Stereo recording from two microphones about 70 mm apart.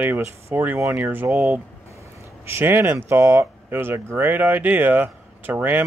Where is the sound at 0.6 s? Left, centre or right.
Right.